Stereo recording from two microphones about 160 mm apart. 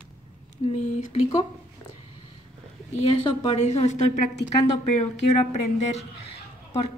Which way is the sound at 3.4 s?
45° left (ahead or behind).